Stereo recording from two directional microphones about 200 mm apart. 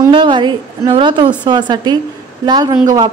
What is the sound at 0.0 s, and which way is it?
Speech, 25° right (ahead or behind).